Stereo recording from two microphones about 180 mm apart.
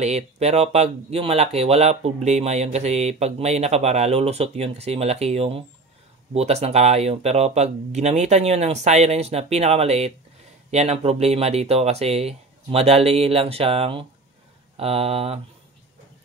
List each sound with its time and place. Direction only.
0.0 s speech: 35° right (ahead or behind)